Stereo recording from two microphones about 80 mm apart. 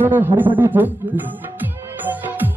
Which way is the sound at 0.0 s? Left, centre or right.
Right.